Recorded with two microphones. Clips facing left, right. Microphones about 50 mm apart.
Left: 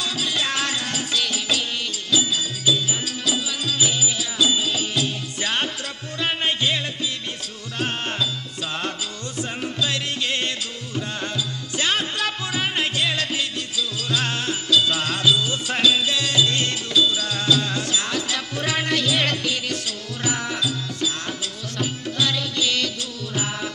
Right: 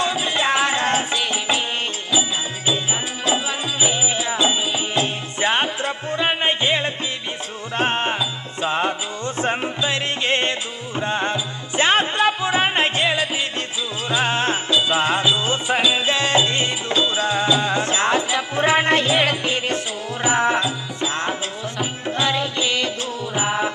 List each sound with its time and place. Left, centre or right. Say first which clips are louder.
0.0 s music: right 5 dB; right
9.4 s music: right 4 dB; right
13.1 s music: right 3 dB; centre